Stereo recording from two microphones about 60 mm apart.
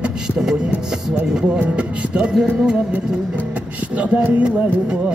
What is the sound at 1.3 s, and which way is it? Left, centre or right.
Music, centre.